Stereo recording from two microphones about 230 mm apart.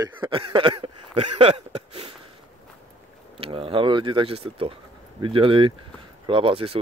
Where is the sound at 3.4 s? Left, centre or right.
Right.